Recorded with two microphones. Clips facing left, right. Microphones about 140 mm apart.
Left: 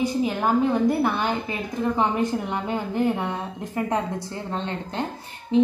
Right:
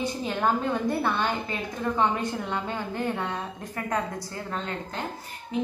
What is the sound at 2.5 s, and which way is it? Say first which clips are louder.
A woman's voice: left 4 dB; 15° left (ahead or behind).